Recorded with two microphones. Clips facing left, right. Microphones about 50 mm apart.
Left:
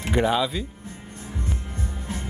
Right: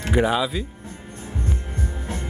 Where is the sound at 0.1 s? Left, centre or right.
Centre.